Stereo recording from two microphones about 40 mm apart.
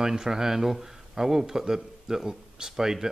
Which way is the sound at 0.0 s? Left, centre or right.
Centre.